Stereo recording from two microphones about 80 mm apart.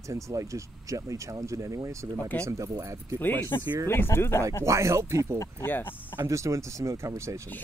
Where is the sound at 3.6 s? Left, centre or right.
Right.